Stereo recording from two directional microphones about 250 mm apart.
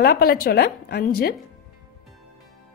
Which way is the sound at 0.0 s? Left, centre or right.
Left.